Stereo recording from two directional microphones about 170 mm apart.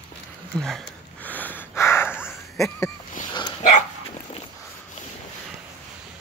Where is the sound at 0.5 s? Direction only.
5° left (ahead or behind).